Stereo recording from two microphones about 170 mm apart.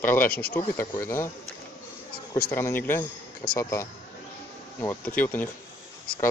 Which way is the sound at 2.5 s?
15° left (ahead or behind).